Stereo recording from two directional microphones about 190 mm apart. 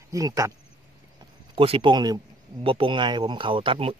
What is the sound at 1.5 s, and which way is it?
Speech, 25° right (ahead or behind).